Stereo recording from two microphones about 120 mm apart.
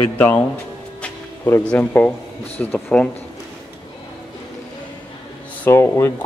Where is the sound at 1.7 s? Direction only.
15° left (ahead or behind).